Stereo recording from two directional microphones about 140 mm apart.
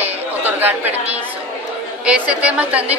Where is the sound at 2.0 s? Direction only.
10° right (ahead or behind).